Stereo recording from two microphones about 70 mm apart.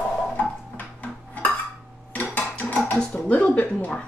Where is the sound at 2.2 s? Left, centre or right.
Left.